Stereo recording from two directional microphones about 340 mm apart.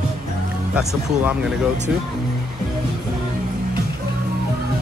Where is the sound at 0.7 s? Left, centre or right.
Centre.